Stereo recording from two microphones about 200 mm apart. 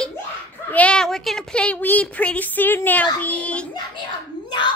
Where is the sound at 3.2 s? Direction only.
5° left (ahead or behind).